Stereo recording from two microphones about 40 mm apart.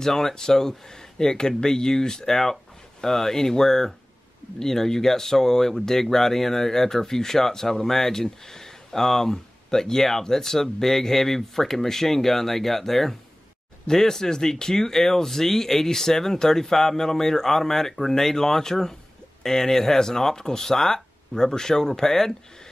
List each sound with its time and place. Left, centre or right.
0.0 s speech: centre